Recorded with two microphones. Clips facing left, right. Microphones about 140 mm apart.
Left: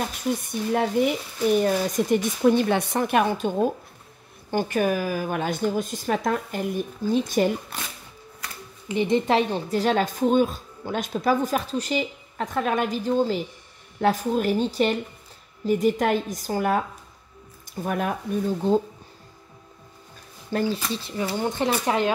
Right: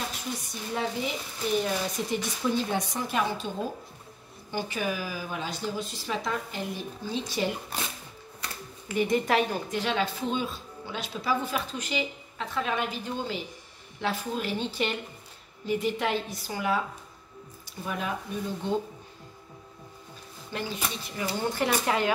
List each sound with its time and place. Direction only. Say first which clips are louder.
0.4 s a woman's voice: left 6 dB; 55° left (ahead or behind)
8.8 s a woman's voice: left 4 dB; 25° left (ahead or behind); by 16.8 s 45° left (ahead or behind)
17.8 s a woman's voice: left 6 dB; 55° left (ahead or behind)
18.6 s speech: left 8 dB; 40° left (ahead or behind)
20.5 s speech: left 8 dB; 30° left (ahead or behind)
21.4 s speech: left 2 dB; 20° left (ahead or behind)